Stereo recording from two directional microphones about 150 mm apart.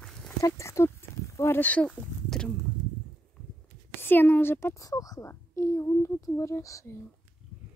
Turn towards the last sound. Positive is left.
turn(degrees=20)  # may be behind; listen again after turning